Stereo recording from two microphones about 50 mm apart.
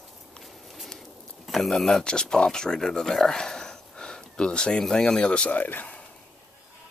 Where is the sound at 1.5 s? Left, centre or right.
Centre; by 5.9 s left.